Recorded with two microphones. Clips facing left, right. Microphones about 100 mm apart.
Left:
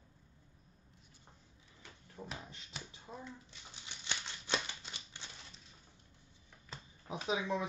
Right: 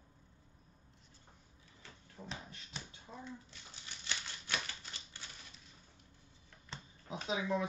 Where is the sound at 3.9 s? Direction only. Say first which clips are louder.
Left 1 dB; 20° left (ahead or behind).